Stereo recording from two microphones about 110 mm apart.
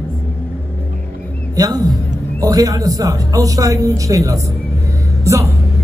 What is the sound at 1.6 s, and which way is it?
A man's voice, 35° right (ahead or behind).